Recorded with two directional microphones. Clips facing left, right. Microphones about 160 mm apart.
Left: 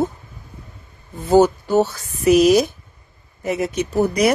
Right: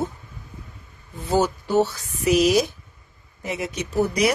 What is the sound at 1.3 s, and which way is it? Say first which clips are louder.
Speech: left 7 dB; 45° left (ahead or behind).